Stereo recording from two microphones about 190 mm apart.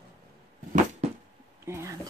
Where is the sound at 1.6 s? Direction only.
15° right (ahead or behind).